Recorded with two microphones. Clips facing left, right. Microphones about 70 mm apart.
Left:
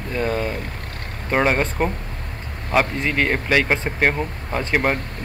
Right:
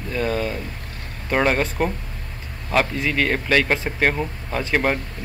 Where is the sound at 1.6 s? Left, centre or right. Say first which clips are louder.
Left 1 dB; left.